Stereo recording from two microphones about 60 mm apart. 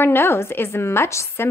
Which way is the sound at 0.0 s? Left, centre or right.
Left.